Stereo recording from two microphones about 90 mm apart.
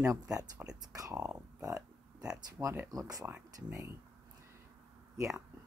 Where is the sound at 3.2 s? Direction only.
25° right (ahead or behind).